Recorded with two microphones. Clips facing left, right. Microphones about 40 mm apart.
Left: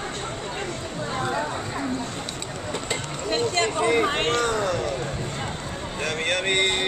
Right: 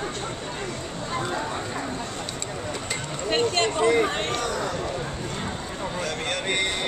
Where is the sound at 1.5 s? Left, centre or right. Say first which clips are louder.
Left 1 dB; centre.